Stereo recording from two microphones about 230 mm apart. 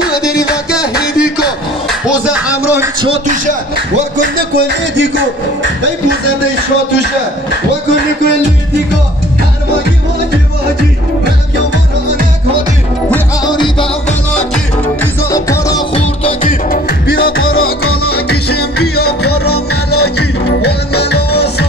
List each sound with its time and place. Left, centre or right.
1.1 s music: centre
3.0 s music: right
3.7 s music: right
13.5 s music: left
15.3 s music: centre; by 17.1 s left
17.1 s music: left
18.1 s music: left